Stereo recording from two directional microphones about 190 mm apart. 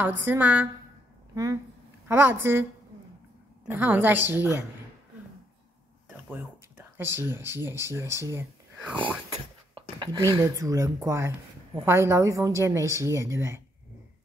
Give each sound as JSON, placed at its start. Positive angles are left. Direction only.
{"t": 0.2, "sound": "a woman's voice", "side_deg": -10}
{"t": 3.6, "sound": "a woman's voice", "side_deg": -10}
{"t": 6.0, "sound": "speech", "side_deg": -10}
{"t": 8.3, "sound": "whispering", "side_deg": -10}
{"t": 9.3, "sound": "a sound", "side_deg": -20}
{"t": 10.4, "sound": "a woman's voice", "side_deg": -15}